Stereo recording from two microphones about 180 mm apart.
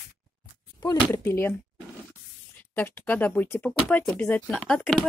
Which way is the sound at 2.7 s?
10° left (ahead or behind).